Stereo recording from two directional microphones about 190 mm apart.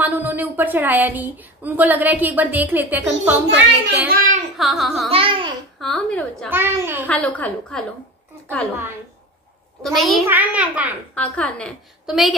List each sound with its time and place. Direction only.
0.0 s a woman's voice: 10° right (ahead or behind)
4.1 s a child's voice: 40° right (ahead or behind)
4.6 s a woman's voice: centre (ahead or behind)
5.1 s a child's voice: 25° right (ahead or behind)
5.8 s a woman's voice: centre (ahead or behind)
6.5 s a woman's voice: 10° right (ahead or behind)
7.1 s a woman's voice: 10° left (ahead or behind)
9.8 s a woman's voice: centre (ahead or behind)
11.1 s a woman's voice: 5° left (ahead or behind)